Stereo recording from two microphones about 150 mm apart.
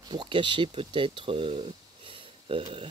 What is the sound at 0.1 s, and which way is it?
Speech, 35° right (ahead or behind).